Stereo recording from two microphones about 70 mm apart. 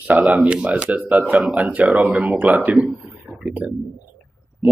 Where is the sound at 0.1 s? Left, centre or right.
Centre.